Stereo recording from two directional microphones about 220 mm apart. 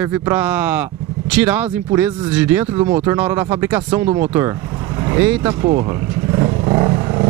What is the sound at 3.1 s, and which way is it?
Speech, 10° right (ahead or behind).